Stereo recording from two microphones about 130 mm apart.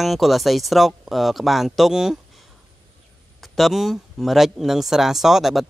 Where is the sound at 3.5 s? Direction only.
Centre (ahead or behind).